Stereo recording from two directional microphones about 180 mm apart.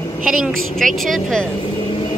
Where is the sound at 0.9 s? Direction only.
Centre (ahead or behind).